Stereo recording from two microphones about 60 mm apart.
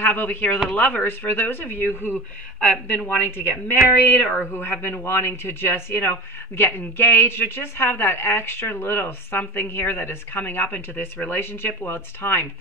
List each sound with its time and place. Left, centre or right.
0.0 s speech: left
3.1 s speech: left